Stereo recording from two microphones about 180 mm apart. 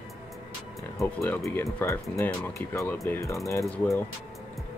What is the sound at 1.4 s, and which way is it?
Speech, 5° left (ahead or behind).